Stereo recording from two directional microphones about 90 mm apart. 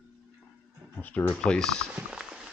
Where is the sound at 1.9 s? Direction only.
10° right (ahead or behind).